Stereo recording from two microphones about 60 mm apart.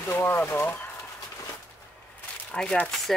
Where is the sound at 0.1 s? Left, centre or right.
Left.